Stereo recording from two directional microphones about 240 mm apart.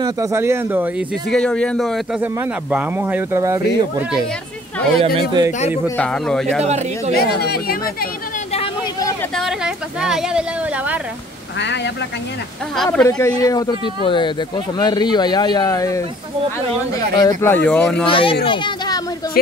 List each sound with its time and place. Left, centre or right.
0.0 s speech: centre
1.3 s speech: centre
5.0 s speech: centre
5.9 s speech: centre
7.4 s speech: left
9.3 s speech: centre
11.6 s speech: left
12.7 s speech: centre
17.1 s speech: centre
18.0 s a child's voice: left
19.4 s speech: left